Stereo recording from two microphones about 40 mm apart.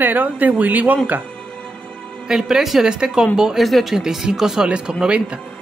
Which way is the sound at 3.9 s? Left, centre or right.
Centre.